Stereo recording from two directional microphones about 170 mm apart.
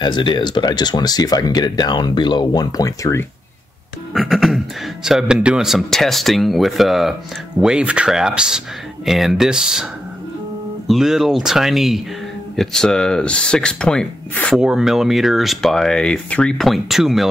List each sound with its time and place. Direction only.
0.0 s speech: 25° left (ahead or behind)
4.1 s speech: centre (ahead or behind)
10.9 s speech: centre (ahead or behind)